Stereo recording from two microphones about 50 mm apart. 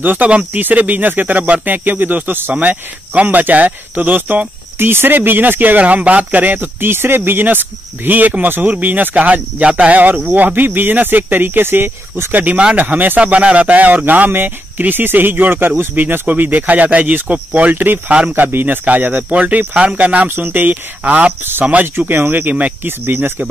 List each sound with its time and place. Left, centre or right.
0.0 s speech: right
2.5 s speech: right
4.7 s speech: right
13.2 s speech: right
17.7 s speech: right
19.3 s speech: right
20.2 s speech: right
21.9 s speech: right
22.8 s speech: right